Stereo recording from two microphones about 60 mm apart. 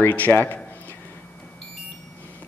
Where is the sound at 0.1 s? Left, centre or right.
Left.